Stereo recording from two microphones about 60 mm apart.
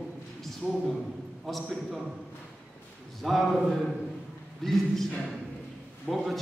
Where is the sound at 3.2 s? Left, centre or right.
Centre.